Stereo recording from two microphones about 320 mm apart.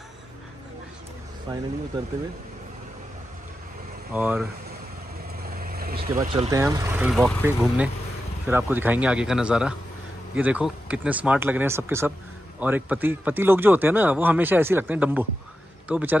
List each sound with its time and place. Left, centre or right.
1.5 s speech: centre
4.1 s speech: centre
5.5 s vehicle: right
6.2 s speech: centre